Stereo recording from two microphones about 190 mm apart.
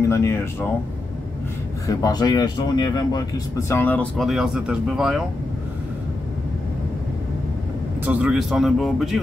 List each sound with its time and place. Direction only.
0.1 s speech: 15° left (ahead or behind)
1.9 s speech: 20° left (ahead or behind); by 5.2 s 5° right (ahead or behind)
8.0 s speech: 5° right (ahead or behind)